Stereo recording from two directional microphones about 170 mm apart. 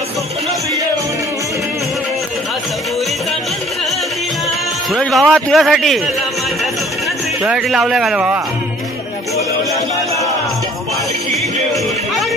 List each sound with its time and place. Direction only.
4.9 s a man's voice: centre (ahead or behind)
7.4 s a man's voice: 5° right (ahead or behind)